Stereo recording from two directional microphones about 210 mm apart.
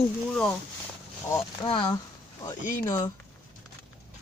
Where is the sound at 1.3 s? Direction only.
20° left (ahead or behind).